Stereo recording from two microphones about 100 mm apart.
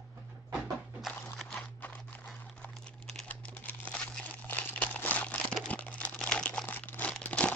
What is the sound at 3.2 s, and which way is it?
Crumpling, 15° left (ahead or behind).